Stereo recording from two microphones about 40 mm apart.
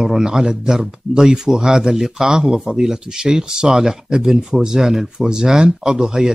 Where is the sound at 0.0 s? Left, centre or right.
Centre.